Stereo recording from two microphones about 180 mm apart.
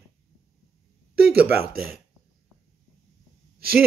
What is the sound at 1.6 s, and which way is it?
Speech, 55° right (ahead or behind).